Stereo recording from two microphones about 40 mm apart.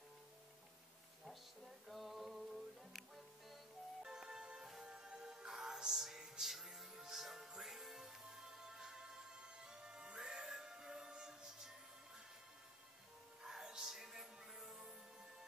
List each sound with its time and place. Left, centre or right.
1.9 s music: centre
4.0 s music: centre
13.5 s music: centre